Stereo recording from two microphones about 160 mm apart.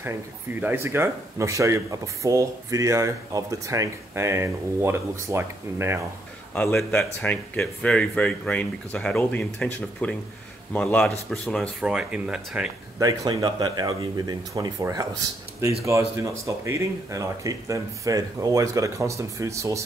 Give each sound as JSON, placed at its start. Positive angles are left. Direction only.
{"t": 0.0, "sound": "speech", "side_deg": -15}
{"t": 6.5, "sound": "speech", "side_deg": 5}
{"t": 13.0, "sound": "speech", "side_deg": -25}